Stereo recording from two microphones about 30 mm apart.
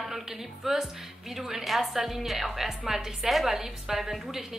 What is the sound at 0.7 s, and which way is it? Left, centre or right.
A woman's voice, centre.